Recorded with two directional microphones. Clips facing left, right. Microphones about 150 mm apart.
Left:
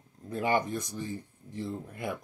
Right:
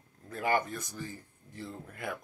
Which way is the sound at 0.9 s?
30° left (ahead or behind).